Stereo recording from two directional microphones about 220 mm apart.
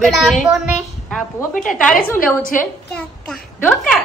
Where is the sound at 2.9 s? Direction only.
5° left (ahead or behind).